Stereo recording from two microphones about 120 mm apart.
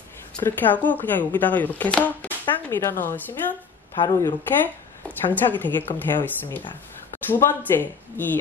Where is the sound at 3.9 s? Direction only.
30° left (ahead or behind).